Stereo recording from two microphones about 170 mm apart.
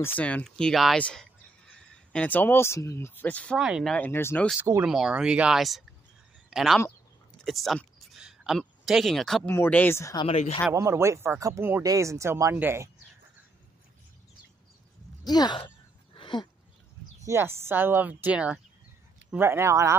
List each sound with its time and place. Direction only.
0.0 s speech: 10° left (ahead or behind)
3.6 s speech: 5° right (ahead or behind)
3.9 s speech: 10° left (ahead or behind)
4.8 s speech: 5° right (ahead or behind)
7.4 s a sound: centre (ahead or behind)
9.5 s speech: 10° left (ahead or behind)
10.2 s speech: 35° left (ahead or behind)
10.7 s speech: 15° right (ahead or behind)
15.2 s speech: 25° left (ahead or behind)
16.2 s a sound: 30° left (ahead or behind)
17.3 s speech: 15° right (ahead or behind)